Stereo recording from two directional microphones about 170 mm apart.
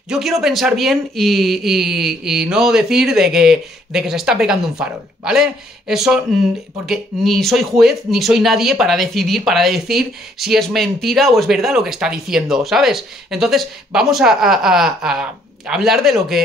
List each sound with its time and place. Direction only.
0.1 s speech: centre (ahead or behind)